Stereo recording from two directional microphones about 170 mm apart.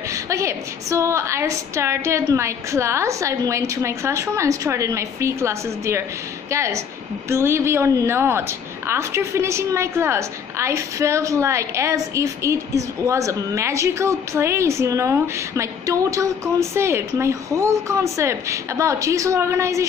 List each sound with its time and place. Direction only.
0.1 s a woman's voice: 20° right (ahead or behind)